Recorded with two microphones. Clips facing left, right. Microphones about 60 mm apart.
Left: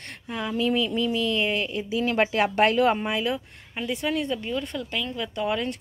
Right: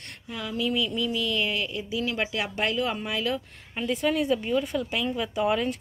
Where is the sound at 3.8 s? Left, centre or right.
Centre.